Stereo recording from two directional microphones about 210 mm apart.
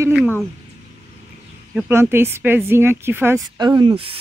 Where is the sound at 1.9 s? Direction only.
10° right (ahead or behind).